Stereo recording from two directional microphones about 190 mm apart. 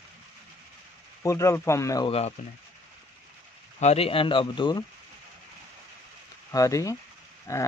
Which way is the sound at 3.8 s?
35° left (ahead or behind).